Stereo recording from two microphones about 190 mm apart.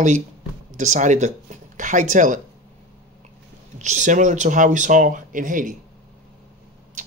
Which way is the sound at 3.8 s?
40° right (ahead or behind).